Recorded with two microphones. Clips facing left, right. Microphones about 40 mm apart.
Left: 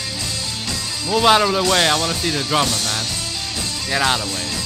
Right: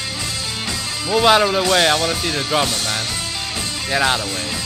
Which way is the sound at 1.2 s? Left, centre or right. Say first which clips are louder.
Even; centre.